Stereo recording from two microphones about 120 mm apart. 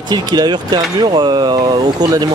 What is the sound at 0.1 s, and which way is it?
Speech, 35° right (ahead or behind).